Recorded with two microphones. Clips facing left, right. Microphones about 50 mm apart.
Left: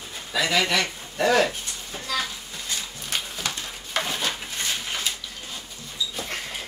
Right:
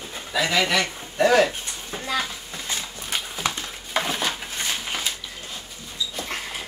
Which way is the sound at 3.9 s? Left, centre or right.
Centre.